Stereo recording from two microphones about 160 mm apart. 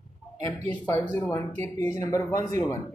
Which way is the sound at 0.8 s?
15° left (ahead or behind).